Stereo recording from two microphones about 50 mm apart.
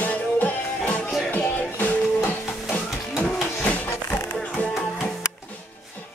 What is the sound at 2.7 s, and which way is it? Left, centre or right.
Music, left.